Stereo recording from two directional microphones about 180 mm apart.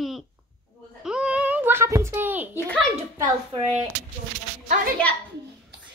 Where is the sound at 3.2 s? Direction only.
15° right (ahead or behind).